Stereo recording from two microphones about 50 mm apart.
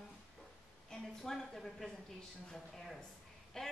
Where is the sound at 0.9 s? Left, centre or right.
Centre.